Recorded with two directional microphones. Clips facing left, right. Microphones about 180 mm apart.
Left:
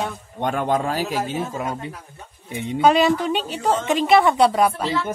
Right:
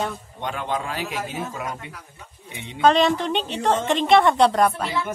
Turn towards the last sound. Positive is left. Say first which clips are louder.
# left 1 dB
turn(degrees=5)  # may be behind; listen again after turning